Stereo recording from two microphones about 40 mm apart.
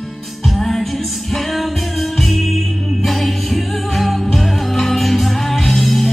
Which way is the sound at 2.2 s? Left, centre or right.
Centre.